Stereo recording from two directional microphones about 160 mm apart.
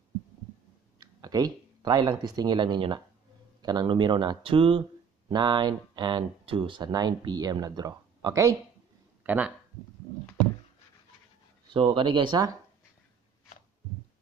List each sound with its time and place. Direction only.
0.9 s speech: 25° right (ahead or behind)
9.2 s speech: 10° right (ahead or behind)
11.7 s speech: 30° right (ahead or behind)